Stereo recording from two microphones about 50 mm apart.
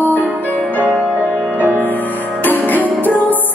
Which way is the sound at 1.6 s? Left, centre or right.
Right.